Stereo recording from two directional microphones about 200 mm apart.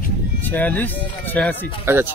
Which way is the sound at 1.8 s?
10° right (ahead or behind).